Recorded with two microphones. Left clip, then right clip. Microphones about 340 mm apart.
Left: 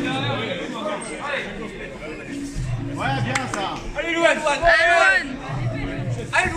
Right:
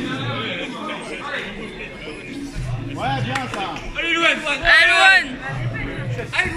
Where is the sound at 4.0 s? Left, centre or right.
Left.